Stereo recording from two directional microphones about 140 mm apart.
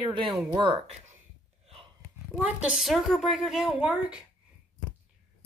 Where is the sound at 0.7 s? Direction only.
50° right (ahead or behind).